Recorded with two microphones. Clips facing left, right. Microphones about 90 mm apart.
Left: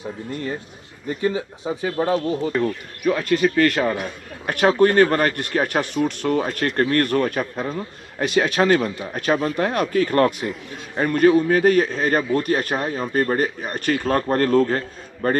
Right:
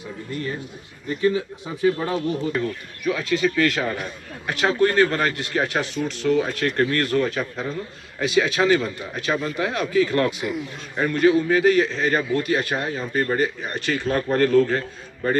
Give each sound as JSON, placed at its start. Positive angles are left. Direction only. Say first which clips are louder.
{"t": 1.0, "sound": "speech", "louder": "right 1 dB", "side_deg": 30}